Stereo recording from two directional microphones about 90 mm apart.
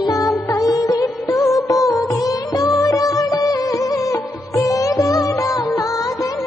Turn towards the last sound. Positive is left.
turn(degrees=40)  # may be behind; listen again after turning